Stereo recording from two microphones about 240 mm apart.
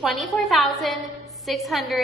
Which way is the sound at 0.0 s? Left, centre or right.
Centre.